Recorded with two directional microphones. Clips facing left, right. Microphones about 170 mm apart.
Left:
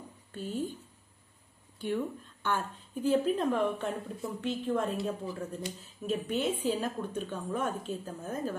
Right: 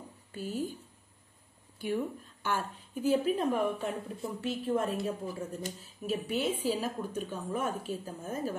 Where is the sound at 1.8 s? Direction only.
10° right (ahead or behind).